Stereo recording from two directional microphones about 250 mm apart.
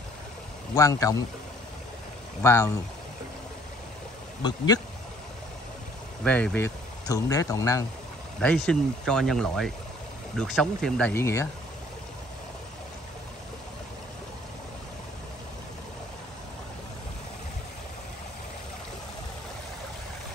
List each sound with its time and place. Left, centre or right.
0.7 s speech: centre
2.4 s speech: centre
4.4 s speech: centre
6.2 s speech: centre